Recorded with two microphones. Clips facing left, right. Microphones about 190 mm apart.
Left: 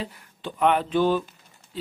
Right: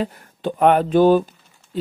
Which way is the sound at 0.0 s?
45° right (ahead or behind).